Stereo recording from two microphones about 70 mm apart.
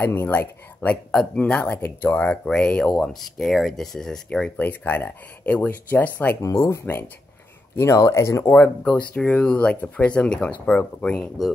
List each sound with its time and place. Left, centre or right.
0.0 s speech: left
3.2 s speech: centre
4.6 s speech: left
6.4 s speech: left
8.5 s speech: left